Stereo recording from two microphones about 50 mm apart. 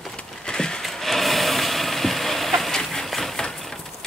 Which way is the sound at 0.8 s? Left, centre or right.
Centre.